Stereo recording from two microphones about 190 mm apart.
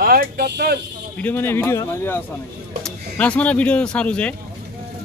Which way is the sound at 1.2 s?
10° left (ahead or behind).